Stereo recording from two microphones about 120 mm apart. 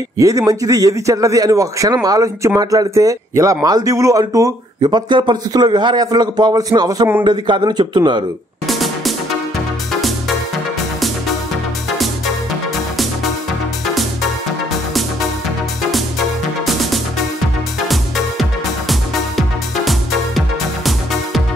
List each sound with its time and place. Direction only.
0.2 s a man's voice: 30° right (ahead or behind)
8.6 s music: centre (ahead or behind)
17.8 s music: centre (ahead or behind)